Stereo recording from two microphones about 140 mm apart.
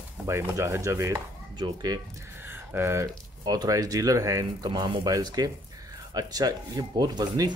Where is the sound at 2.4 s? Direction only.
15° right (ahead or behind).